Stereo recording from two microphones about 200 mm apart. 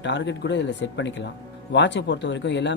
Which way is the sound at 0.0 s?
60° left (ahead or behind).